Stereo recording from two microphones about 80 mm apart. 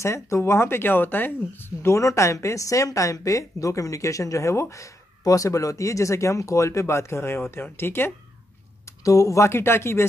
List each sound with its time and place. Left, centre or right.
0.0 s speech: left
8.8 s speech: left